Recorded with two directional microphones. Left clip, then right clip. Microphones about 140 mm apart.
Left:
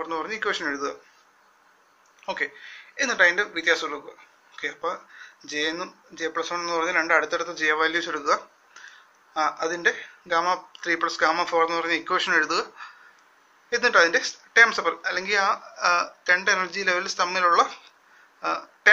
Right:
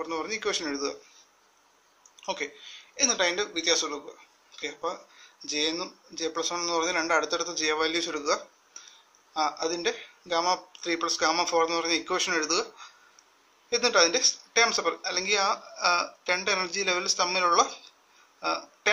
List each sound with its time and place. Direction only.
0.0 s speech: 45° right (ahead or behind)
2.1 s speech: 40° right (ahead or behind)
9.3 s speech: 40° right (ahead or behind)
18.4 s a sound: 45° right (ahead or behind)